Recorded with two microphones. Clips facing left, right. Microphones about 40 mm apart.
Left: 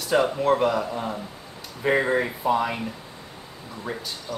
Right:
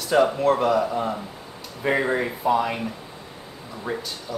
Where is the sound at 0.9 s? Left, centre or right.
Centre.